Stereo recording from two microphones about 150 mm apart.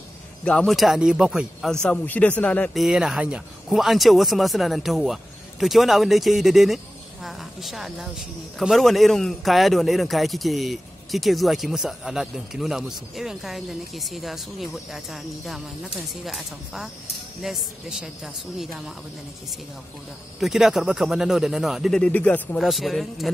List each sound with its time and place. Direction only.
0.5 s speech: 5° left (ahead or behind)
20.3 s speech: centre (ahead or behind)
22.6 s speech: centre (ahead or behind)